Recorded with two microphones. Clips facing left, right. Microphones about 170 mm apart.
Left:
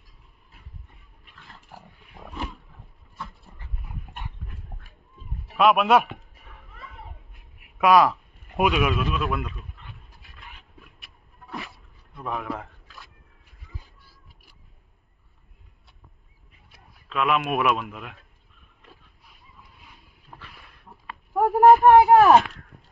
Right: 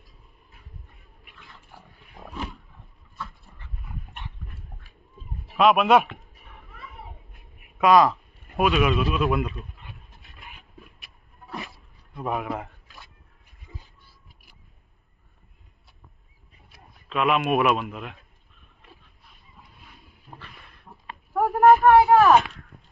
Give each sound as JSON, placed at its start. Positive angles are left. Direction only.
{"t": 2.2, "sound": "roaring cats", "side_deg": -15}
{"t": 5.6, "sound": "a man's voice", "side_deg": 5}
{"t": 7.8, "sound": "speech", "side_deg": 5}
{"t": 12.2, "sound": "a man's voice", "side_deg": -10}
{"t": 17.1, "sound": "a man's voice", "side_deg": 0}
{"t": 20.9, "sound": "a sound", "side_deg": -5}
{"t": 21.3, "sound": "a sound", "side_deg": 15}
{"t": 21.6, "sound": "speech", "side_deg": 25}